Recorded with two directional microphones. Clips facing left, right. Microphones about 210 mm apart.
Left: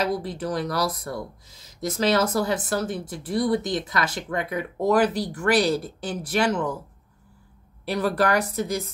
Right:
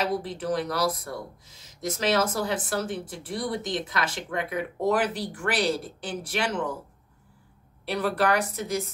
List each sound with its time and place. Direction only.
0.0 s speech: 40° left (ahead or behind)
7.9 s speech: 40° left (ahead or behind)